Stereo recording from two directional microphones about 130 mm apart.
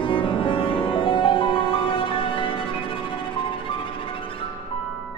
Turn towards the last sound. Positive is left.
turn(degrees=40)  # may be behind; listen again after turning